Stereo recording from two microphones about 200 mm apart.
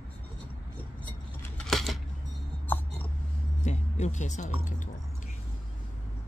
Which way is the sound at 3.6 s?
35° left (ahead or behind).